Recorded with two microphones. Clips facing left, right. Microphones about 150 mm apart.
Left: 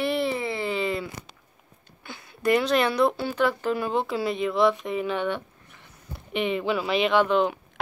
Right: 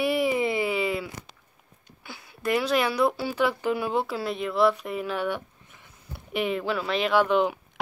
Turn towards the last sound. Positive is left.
turn(degrees=-10)  # may be behind; listen again after turning